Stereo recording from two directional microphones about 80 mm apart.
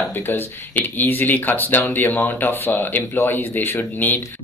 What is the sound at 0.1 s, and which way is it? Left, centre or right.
Speech, left.